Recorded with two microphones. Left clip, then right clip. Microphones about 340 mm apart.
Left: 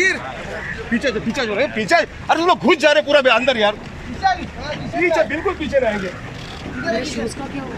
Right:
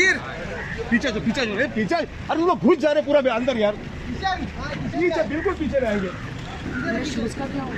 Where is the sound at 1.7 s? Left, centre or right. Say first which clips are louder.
Left 7 dB; left.